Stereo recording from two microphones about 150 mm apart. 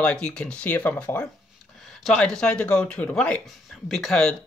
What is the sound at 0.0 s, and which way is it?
Speech, 5° left (ahead or behind).